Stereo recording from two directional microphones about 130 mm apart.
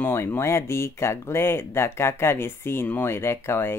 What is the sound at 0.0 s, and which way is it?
Speech, 15° left (ahead or behind).